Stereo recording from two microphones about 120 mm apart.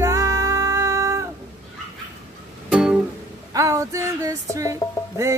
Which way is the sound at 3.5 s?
25° right (ahead or behind).